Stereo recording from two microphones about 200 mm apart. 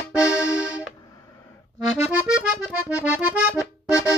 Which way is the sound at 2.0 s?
5° right (ahead or behind).